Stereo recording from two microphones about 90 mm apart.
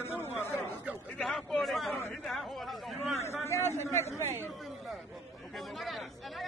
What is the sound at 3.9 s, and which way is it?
Speech, 30° left (ahead or behind).